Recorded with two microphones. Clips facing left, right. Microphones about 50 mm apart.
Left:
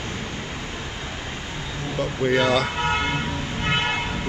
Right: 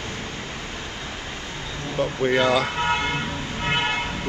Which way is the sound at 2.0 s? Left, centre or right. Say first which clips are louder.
Even; centre.